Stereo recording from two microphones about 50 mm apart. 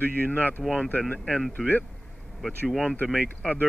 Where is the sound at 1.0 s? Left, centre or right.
Centre.